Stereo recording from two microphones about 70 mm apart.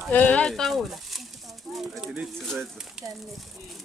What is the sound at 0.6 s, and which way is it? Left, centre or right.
Speech, centre.